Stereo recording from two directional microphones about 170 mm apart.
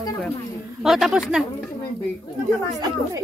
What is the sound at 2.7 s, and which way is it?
Speech, 20° right (ahead or behind).